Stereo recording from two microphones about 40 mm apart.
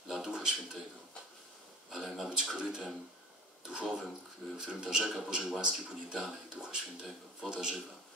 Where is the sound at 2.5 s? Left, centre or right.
Centre.